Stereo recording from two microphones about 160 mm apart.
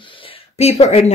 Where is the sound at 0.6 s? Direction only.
40° left (ahead or behind).